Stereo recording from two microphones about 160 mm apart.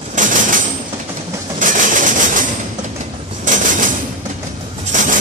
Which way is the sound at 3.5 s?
50° right (ahead or behind).